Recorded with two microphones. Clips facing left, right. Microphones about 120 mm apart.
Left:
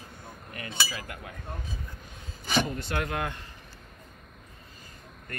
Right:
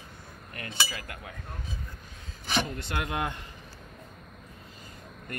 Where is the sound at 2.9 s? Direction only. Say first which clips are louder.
Right 1 dB; 15° right (ahead or behind).